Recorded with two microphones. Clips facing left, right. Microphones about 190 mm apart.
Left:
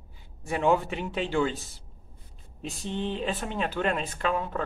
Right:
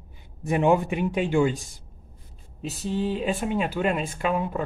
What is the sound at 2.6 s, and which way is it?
Speech, 5° right (ahead or behind).